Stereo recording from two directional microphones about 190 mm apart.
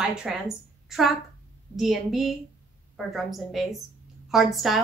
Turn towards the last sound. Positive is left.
turn(degrees=0)  # may be behind; listen again after turning